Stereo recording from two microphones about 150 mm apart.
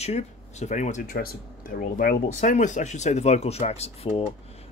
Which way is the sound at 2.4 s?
55° left (ahead or behind).